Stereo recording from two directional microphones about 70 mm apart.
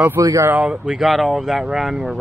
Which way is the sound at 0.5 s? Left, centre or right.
Centre.